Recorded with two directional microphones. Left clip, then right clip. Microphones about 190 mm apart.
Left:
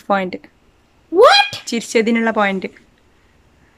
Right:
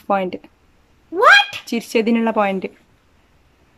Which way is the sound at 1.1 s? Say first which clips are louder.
Left 1 dB; 25° left (ahead or behind).